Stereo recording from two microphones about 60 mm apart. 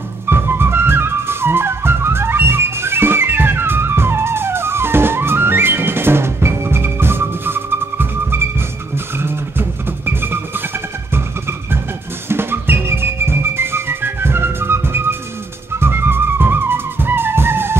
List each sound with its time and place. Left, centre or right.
0.3 s music: right